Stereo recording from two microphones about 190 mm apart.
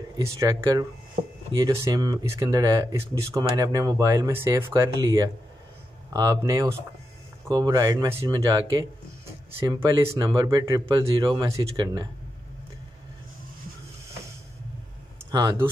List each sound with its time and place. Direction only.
0.1 s speech: 15° right (ahead or behind)
15.3 s speech: 15° right (ahead or behind)